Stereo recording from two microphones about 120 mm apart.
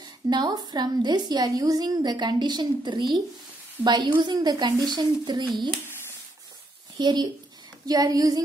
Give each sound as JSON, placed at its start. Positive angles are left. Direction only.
{"t": 0.3, "sound": "a woman's voice", "side_deg": -35}
{"t": 7.0, "sound": "a woman's voice", "side_deg": -40}